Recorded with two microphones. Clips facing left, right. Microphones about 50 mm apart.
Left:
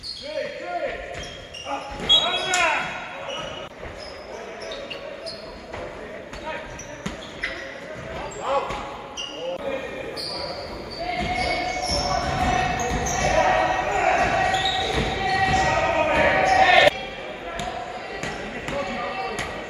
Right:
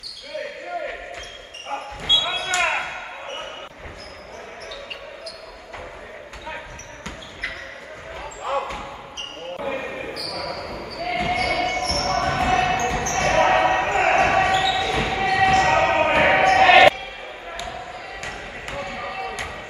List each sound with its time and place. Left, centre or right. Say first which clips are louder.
0.4 s basketball bounce: left 2 dB; centre
2.0 s basketball bounce: left 1 dB; centre
9.7 s basketball bounce: right 1 dB; right
17.6 s basketball bounce: left 2 dB; centre